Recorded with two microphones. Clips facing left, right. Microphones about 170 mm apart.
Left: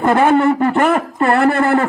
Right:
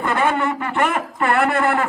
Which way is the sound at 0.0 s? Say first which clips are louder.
Left 8 dB; 45° left (ahead or behind).